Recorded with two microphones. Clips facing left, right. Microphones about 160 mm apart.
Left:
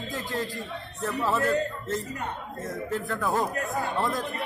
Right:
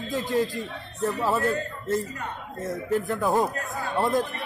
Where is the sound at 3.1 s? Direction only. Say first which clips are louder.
Right 3 dB; 20° right (ahead or behind).